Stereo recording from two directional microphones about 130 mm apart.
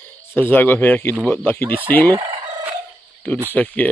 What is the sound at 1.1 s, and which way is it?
Speech, 15° left (ahead or behind).